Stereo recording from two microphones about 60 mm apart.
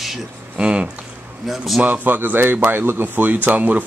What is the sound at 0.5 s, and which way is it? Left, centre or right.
Speech, centre.